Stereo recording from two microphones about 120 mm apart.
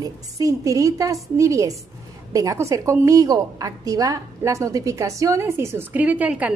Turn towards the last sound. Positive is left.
turn(degrees=-10)  # may be behind; listen again after turning